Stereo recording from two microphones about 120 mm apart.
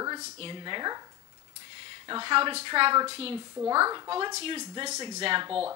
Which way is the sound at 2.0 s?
40° right (ahead or behind).